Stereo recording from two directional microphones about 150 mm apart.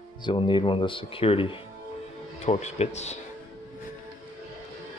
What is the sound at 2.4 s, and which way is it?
Speech, 50° left (ahead or behind).